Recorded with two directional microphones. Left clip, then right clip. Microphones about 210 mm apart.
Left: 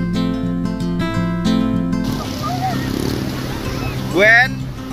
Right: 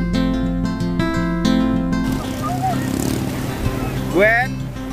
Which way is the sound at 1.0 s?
15° left (ahead or behind).